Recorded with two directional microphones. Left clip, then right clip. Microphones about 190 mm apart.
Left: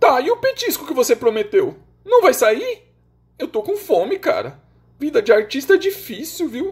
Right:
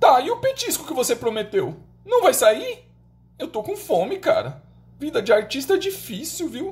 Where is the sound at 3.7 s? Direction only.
25° left (ahead or behind).